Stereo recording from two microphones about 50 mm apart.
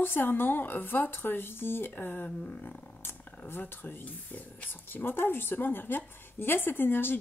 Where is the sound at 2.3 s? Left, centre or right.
Left.